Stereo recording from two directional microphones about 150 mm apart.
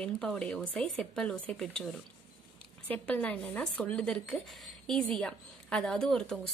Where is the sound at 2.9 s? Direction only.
10° left (ahead or behind).